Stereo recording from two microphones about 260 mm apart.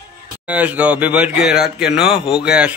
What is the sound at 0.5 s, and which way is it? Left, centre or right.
Speech, centre.